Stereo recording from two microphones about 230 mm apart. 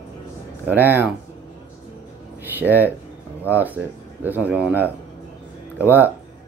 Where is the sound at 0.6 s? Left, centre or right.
Centre.